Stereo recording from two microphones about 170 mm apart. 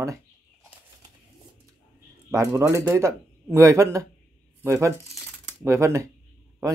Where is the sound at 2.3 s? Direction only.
15° right (ahead or behind).